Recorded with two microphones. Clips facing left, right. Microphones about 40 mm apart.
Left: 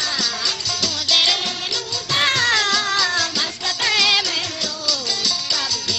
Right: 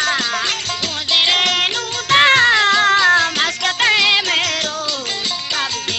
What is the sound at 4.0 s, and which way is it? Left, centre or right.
Music, right.